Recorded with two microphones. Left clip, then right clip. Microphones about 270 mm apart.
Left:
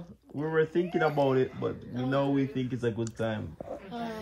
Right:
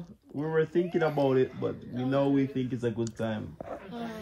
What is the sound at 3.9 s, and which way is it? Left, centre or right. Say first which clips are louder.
Speech: left 2 dB; centre.